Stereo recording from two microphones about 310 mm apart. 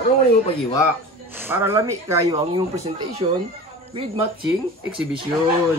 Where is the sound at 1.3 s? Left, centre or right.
Centre.